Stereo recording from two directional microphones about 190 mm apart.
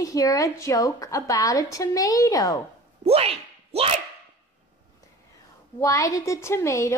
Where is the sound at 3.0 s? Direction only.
30° right (ahead or behind).